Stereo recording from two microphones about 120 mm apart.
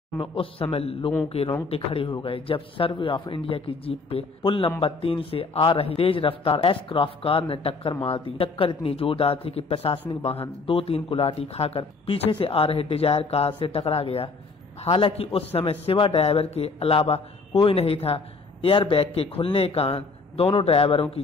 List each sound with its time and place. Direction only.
0.2 s a man's voice: 50° left (ahead or behind)